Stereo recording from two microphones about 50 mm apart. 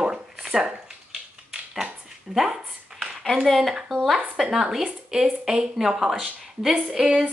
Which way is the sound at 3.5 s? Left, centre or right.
Centre.